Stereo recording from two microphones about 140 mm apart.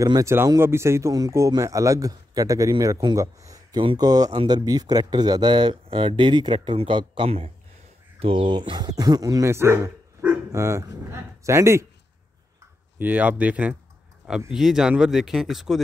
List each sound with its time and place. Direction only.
0.0 s speech: 20° right (ahead or behind)
13.0 s speech: 10° right (ahead or behind)